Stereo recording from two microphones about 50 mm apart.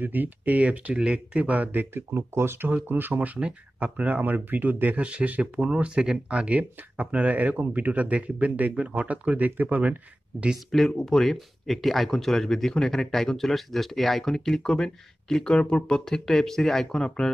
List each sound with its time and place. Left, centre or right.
0.0 s speech: right
0.9 s speech: centre; by 2.0 s right
2.1 s speech: right
3.3 s speech: right
5.0 s speech: right
11.0 s speech: centre